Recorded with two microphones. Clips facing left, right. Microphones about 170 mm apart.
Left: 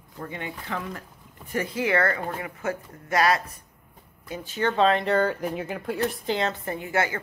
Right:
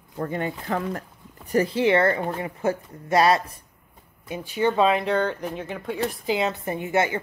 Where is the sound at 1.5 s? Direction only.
30° right (ahead or behind).